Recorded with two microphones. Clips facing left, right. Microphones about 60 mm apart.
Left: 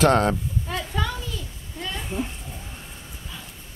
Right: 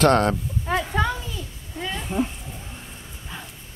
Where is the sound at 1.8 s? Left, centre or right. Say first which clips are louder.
Right 2 dB; centre.